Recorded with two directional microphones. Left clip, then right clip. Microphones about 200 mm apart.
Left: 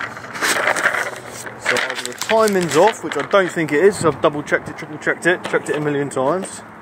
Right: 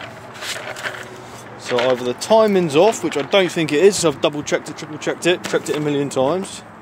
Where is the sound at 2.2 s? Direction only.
15° right (ahead or behind).